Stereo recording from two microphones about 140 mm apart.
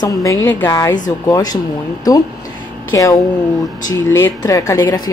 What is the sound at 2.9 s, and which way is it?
A woman's voice, 20° left (ahead or behind).